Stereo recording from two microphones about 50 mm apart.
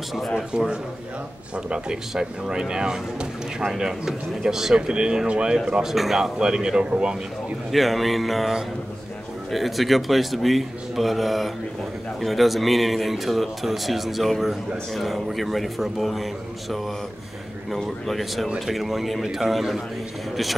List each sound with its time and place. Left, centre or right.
0.1 s speech: centre
1.7 s speech: centre
7.7 s speech: centre
17.6 s speech: centre